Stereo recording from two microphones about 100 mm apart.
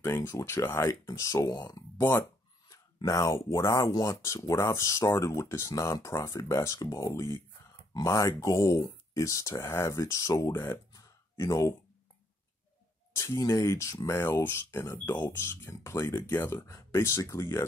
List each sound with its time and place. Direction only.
0.0 s speech: 30° left (ahead or behind)
3.9 s speech: 45° left (ahead or behind)
4.2 s speech: 30° left (ahead or behind)
11.0 s a sound: 30° left (ahead or behind)
13.1 s speech: 30° left (ahead or behind)
14.4 s speech: 25° left (ahead or behind)